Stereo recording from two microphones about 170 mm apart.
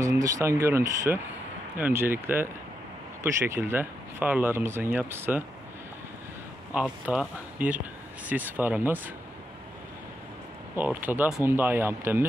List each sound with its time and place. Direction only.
0.0 s speech: 20° right (ahead or behind)
6.7 s speech: 5° right (ahead or behind)
10.8 s speech: 10° right (ahead or behind)